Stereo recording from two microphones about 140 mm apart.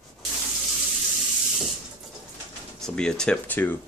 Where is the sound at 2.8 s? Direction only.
5° left (ahead or behind).